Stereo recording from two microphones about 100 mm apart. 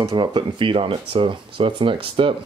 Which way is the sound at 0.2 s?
55° right (ahead or behind).